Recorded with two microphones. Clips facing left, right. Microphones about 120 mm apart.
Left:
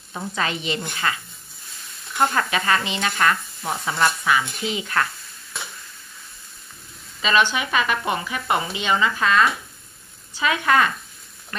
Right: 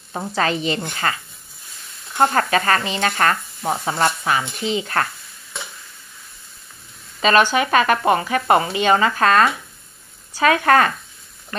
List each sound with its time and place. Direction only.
0.1 s speech: 35° right (ahead or behind)
2.1 s speech: 45° right (ahead or behind)
7.2 s speech: 45° right (ahead or behind)